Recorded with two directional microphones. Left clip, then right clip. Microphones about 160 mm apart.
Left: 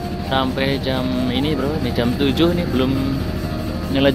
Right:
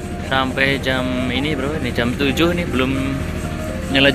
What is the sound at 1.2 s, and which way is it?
Speech, 20° left (ahead or behind).